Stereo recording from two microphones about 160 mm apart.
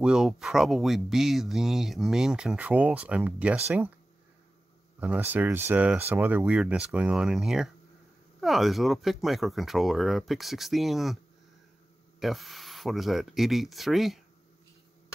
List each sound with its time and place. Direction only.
0.0 s speech: 5° right (ahead or behind)
5.0 s speech: 10° right (ahead or behind)
12.2 s speech: centre (ahead or behind)